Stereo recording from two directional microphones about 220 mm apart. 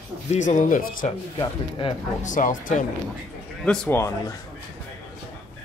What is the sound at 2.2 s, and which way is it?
Speech, 35° left (ahead or behind).